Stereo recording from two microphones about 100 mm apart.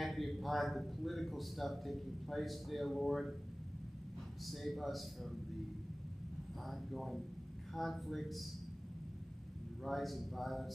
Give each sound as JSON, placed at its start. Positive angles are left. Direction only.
{"t": 0.0, "sound": "speech", "side_deg": 0}
{"t": 4.5, "sound": "speech", "side_deg": 0}
{"t": 6.6, "sound": "speech", "side_deg": 0}
{"t": 9.8, "sound": "speech", "side_deg": 0}